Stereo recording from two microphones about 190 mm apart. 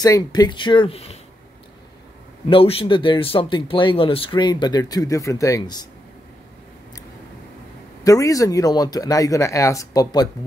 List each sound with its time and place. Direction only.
0.0 s speech: 20° left (ahead or behind)
2.5 s speech: 30° left (ahead or behind)
8.0 s speech: 15° left (ahead or behind)